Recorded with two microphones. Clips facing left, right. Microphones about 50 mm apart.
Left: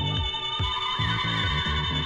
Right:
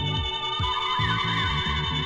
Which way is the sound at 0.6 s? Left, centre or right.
Centre.